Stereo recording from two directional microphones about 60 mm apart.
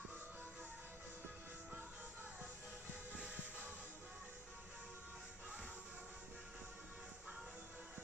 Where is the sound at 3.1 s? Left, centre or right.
Right.